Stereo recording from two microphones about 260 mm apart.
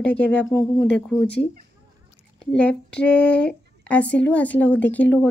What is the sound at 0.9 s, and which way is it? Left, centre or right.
Speech, left.